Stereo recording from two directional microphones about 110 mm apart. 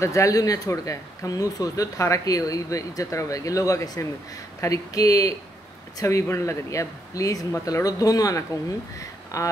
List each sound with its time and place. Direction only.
0.0 s speech: 30° left (ahead or behind)